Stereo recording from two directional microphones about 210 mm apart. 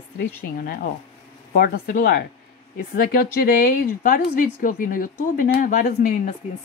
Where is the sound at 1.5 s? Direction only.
45° left (ahead or behind).